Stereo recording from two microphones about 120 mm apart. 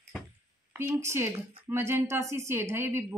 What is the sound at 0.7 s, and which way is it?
Speech, 20° right (ahead or behind).